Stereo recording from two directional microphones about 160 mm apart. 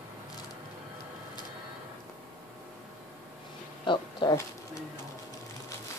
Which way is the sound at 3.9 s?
25° left (ahead or behind).